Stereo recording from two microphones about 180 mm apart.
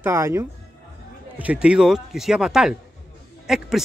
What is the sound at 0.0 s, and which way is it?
Speech, 15° right (ahead or behind).